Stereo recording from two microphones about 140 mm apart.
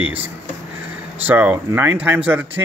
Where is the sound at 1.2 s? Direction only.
15° right (ahead or behind).